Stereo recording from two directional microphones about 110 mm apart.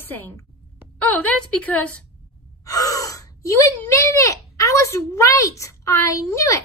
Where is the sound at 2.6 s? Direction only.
35° left (ahead or behind).